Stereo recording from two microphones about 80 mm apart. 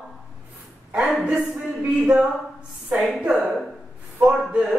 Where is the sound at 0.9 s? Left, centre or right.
Centre.